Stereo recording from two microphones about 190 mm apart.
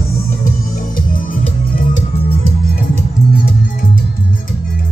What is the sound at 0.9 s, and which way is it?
Music, 45° left (ahead or behind).